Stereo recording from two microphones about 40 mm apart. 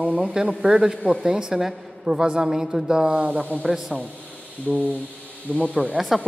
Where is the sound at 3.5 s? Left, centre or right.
Right.